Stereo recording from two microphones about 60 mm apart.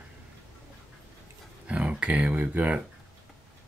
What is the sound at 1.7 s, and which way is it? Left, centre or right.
Speech, right.